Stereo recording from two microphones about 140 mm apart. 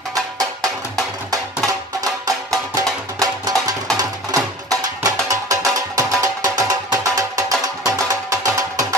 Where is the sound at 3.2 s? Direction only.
25° right (ahead or behind).